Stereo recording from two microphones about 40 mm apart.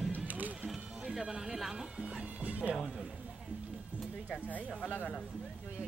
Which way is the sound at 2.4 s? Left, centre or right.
Right.